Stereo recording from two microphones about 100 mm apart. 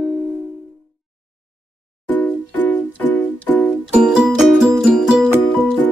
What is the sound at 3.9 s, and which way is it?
Music, 5° right (ahead or behind).